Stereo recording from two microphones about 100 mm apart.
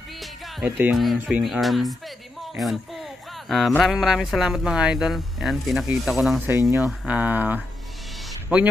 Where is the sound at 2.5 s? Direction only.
Centre (ahead or behind).